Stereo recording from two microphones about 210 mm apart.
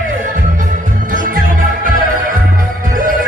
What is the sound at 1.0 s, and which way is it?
Music, 40° right (ahead or behind).